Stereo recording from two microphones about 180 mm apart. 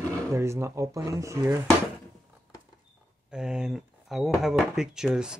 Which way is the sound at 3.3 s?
5° right (ahead or behind).